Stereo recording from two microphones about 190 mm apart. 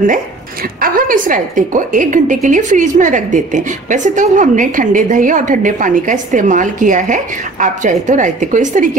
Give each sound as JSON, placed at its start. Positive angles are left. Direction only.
{"t": 0.7, "sound": "a woman's voice", "side_deg": -50}